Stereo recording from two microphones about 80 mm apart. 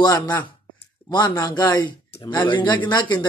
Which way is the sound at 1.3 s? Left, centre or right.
Left.